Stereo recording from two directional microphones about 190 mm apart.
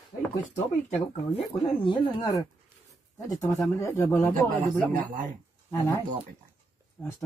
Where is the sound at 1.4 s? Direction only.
25° left (ahead or behind).